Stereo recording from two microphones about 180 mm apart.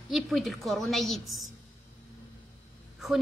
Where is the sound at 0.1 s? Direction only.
Centre (ahead or behind).